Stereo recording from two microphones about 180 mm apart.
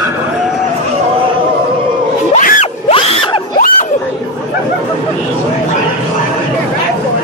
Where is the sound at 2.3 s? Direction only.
40° left (ahead or behind).